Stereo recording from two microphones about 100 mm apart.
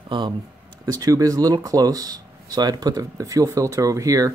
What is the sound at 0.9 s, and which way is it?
Speech, 35° right (ahead or behind).